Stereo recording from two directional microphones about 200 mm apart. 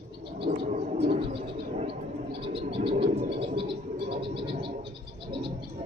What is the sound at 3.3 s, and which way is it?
Frog, 25° right (ahead or behind).